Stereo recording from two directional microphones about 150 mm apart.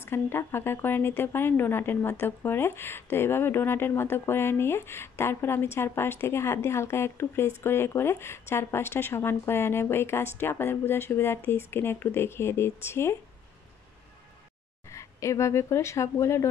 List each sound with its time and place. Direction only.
0.0 s speech: 15° left (ahead or behind)
14.9 s speech: 20° left (ahead or behind)